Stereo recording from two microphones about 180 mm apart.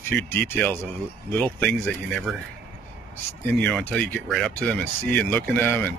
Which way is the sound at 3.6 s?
5° left (ahead or behind).